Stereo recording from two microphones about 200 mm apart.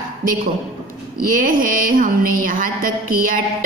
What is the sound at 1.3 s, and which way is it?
A woman's voice, 45° right (ahead or behind).